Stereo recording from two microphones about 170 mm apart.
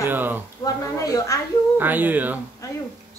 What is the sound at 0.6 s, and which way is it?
Speech, 20° left (ahead or behind).